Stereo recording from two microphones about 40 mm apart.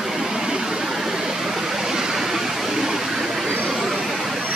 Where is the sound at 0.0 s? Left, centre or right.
Centre.